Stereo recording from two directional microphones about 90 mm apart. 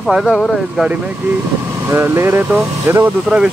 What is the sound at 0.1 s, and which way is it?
Speech, 5° right (ahead or behind).